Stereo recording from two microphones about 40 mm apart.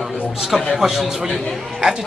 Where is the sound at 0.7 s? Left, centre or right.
Centre.